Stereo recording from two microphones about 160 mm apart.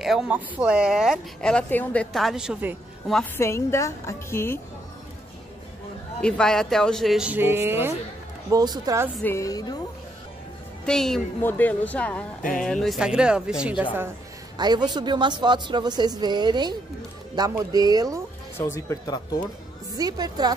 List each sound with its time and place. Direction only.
0.0 s speech: centre (ahead or behind)
3.3 s a woman's voice: 15° left (ahead or behind)
6.2 s speech: 5° left (ahead or behind); by 7.9 s 15° right (ahead or behind)
8.5 s a woman's voice: 25° right (ahead or behind)
9.2 s a woman's voice: 20° left (ahead or behind)
10.9 s a woman's voice: 5° left (ahead or behind)
14.6 s a woman's voice: 25° right (ahead or behind)
18.6 s a woman's voice: 20° left (ahead or behind)
20.0 s a woman's voice: 25° right (ahead or behind)